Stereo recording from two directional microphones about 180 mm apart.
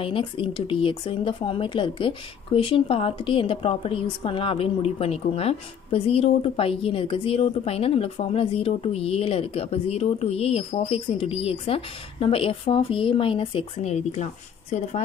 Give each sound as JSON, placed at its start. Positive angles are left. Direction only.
{"t": 0.0, "sound": "speech", "side_deg": 30}